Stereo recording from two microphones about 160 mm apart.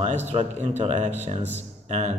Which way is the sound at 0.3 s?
45° right (ahead or behind).